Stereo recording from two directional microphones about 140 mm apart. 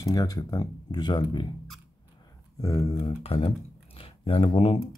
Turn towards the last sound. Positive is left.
turn(degrees=40)  # may be behind; listen again after turning